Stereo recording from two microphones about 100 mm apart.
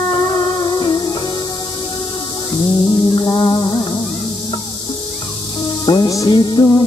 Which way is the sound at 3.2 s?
45° left (ahead or behind).